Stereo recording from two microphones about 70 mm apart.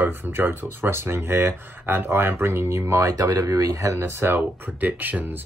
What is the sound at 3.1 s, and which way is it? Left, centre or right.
Speech, right.